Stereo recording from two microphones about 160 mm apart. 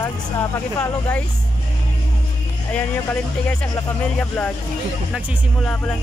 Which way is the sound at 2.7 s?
10° left (ahead or behind).